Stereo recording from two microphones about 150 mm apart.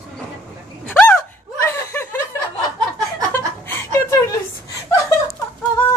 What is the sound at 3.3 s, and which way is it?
Chuckle, 15° left (ahead or behind).